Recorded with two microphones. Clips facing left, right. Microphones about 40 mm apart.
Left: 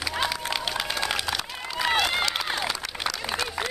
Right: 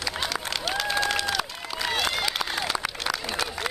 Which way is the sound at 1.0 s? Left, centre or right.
Centre.